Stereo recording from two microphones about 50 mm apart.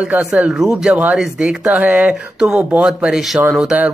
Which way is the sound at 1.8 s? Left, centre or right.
Right.